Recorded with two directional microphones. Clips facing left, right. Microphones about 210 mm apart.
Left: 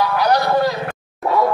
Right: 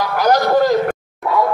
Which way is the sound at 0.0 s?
45° right (ahead or behind).